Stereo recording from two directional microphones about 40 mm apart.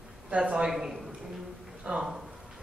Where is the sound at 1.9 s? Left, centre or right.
Right.